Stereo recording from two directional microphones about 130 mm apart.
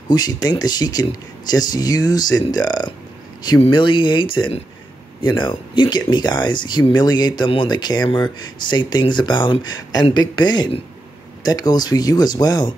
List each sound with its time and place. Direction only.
0.1 s speech: 30° left (ahead or behind)